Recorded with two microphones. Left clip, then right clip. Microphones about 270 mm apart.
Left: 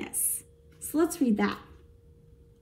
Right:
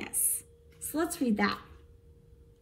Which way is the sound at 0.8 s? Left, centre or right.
Centre.